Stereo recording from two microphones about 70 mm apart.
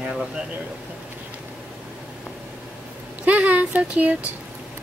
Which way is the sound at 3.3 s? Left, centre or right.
Centre.